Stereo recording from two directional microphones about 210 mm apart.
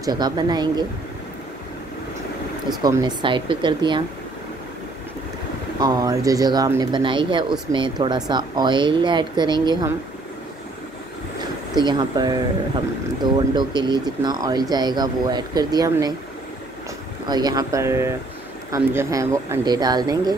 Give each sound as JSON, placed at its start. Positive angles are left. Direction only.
{"t": 0.0, "sound": "speech", "side_deg": -20}
{"t": 2.8, "sound": "speech", "side_deg": -20}
{"t": 5.8, "sound": "speech", "side_deg": -15}
{"t": 11.7, "sound": "speech", "side_deg": -20}
{"t": 17.3, "sound": "speech", "side_deg": -20}